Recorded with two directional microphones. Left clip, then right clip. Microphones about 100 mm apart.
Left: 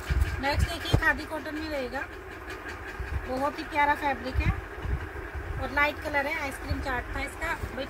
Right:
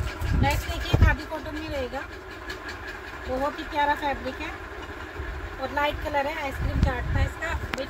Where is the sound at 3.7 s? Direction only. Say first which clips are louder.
Even; 5° left (ahead or behind).